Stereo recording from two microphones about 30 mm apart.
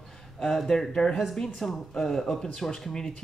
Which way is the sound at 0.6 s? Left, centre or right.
Centre.